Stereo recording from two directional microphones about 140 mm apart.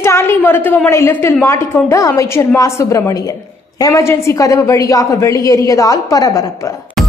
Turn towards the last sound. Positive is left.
turn(degrees=25)  # may be behind; listen again after turning